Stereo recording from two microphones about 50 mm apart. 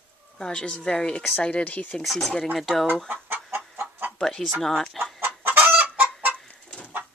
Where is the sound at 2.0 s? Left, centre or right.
Centre.